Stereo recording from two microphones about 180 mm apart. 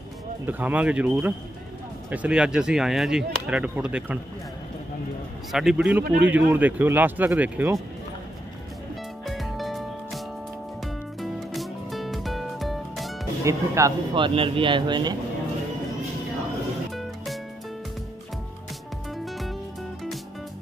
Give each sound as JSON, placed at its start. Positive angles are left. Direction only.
{"t": 0.5, "sound": "a man's voice", "side_deg": -10}
{"t": 5.5, "sound": "a man's voice", "side_deg": 0}
{"t": 9.2, "sound": "music", "side_deg": 0}
{"t": 13.4, "sound": "speech", "side_deg": -15}
{"t": 19.1, "sound": "music", "side_deg": 0}